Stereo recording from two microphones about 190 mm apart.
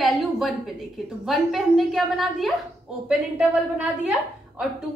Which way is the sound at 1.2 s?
Centre (ahead or behind).